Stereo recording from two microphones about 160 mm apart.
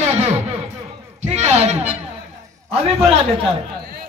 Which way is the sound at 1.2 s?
45° right (ahead or behind).